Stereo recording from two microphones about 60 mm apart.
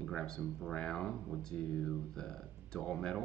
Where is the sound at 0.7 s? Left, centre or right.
Centre.